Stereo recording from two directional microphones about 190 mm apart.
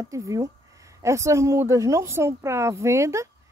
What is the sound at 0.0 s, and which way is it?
Speech, 15° right (ahead or behind).